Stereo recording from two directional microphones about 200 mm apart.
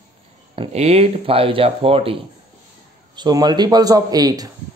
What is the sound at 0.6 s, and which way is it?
A man's voice, 30° right (ahead or behind).